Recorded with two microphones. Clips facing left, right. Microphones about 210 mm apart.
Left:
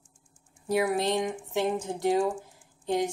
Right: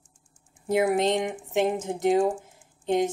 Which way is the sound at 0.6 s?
20° right (ahead or behind).